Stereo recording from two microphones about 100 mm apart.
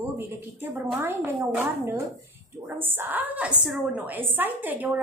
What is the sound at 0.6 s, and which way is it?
A woman's voice, 25° right (ahead or behind).